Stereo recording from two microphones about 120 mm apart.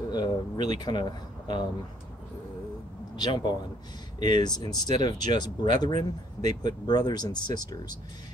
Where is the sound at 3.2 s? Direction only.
35° left (ahead or behind).